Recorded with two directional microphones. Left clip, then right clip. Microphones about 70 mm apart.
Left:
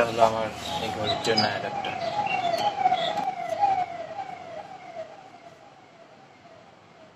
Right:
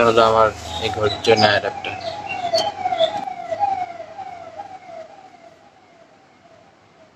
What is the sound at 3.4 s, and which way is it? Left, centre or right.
Emergency vehicle, right.